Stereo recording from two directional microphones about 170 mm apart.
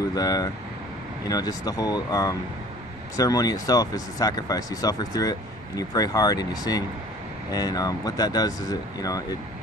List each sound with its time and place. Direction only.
0.1 s speech: 20° left (ahead or behind)